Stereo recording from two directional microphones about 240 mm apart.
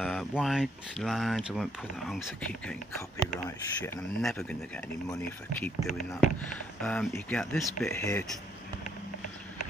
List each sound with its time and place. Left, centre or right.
0.0 s speech: centre
5.8 s speech: left
6.2 s speech: centre